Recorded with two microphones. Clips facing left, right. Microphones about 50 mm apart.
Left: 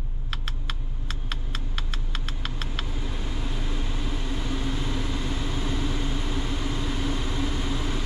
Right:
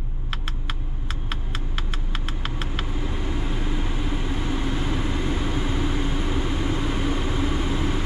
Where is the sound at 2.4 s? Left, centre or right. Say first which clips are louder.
Right 3 dB; centre.